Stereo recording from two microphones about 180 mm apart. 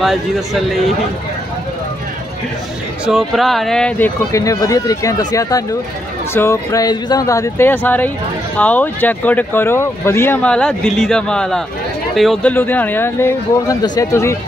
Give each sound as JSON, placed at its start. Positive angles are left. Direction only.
{"t": 0.0, "sound": "speech", "side_deg": 0}
{"t": 3.1, "sound": "speech", "side_deg": 0}
{"t": 4.3, "sound": "speech", "side_deg": 20}